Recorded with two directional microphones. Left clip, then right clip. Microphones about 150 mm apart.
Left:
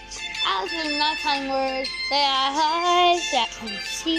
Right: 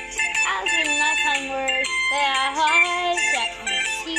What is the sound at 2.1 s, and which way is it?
Music, 20° left (ahead or behind).